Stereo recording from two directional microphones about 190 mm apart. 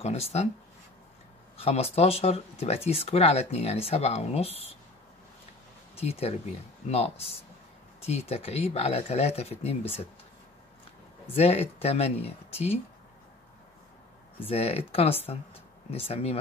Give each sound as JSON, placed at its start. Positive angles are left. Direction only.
{"t": 0.0, "sound": "speech", "side_deg": 35}
{"t": 1.6, "sound": "speech", "side_deg": 35}
{"t": 5.9, "sound": "speech", "side_deg": 30}
{"t": 11.3, "sound": "speech", "side_deg": 30}
{"t": 14.4, "sound": "speech", "side_deg": 30}